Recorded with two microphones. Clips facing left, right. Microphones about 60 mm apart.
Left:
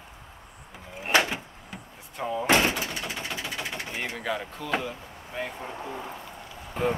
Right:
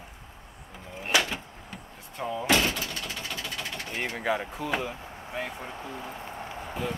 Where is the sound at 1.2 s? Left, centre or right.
Centre.